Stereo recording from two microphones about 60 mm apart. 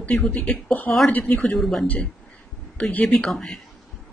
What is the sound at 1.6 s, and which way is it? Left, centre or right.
Speech, centre.